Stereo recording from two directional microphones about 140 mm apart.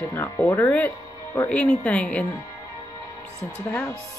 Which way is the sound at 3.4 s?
10° left (ahead or behind).